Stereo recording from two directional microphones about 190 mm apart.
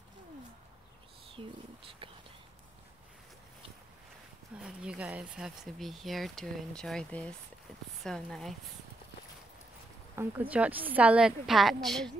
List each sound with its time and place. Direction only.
1.4 s speech: 25° right (ahead or behind)
4.6 s speech: 5° right (ahead or behind)
10.1 s a woman's voice: 10° right (ahead or behind)